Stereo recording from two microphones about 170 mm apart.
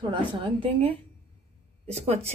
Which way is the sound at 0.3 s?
30° right (ahead or behind).